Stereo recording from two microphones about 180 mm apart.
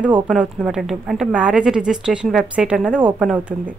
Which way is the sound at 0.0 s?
5° right (ahead or behind).